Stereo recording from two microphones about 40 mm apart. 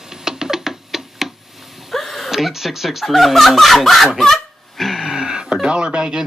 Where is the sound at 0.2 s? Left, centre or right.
Centre.